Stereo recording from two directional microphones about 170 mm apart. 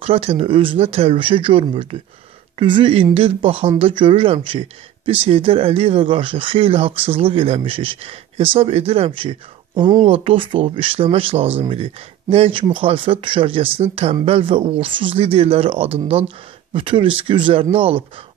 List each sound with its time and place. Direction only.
0.0 s speech: 35° right (ahead or behind)